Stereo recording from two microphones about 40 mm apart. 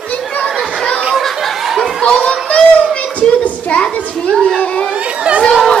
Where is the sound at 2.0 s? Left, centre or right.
Left.